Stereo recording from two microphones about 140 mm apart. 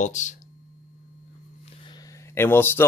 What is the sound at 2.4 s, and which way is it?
Speech, 15° left (ahead or behind).